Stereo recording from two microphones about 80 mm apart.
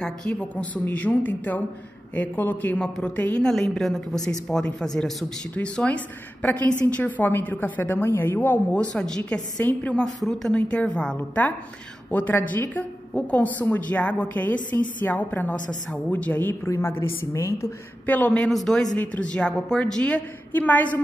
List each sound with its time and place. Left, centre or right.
0.0 s a woman's voice: centre
8.9 s a woman's voice: centre
10.0 s a woman's voice: centre
10.5 s a woman's voice: centre; by 17.7 s left
18.0 s a woman's voice: left
18.4 s a woman's voice: centre
18.9 s a woman's voice: centre